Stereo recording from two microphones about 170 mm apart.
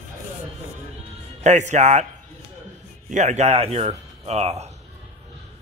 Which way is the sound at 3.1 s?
40° right (ahead or behind).